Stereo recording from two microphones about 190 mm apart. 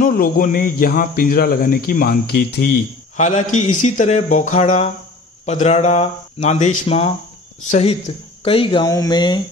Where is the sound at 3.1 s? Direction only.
40° left (ahead or behind).